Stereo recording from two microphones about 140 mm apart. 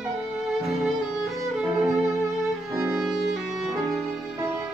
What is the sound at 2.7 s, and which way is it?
Music, 25° right (ahead or behind).